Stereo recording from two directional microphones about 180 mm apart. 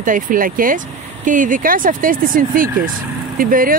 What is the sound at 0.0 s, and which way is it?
Speech, 50° right (ahead or behind).